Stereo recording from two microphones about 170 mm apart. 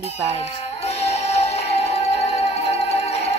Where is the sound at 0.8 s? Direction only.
40° left (ahead or behind).